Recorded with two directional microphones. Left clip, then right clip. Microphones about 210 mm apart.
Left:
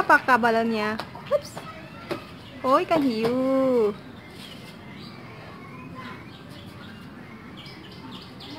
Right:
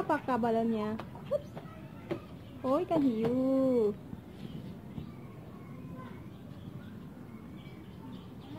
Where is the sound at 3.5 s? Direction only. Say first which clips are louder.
Left 7 dB; 25° left (ahead or behind).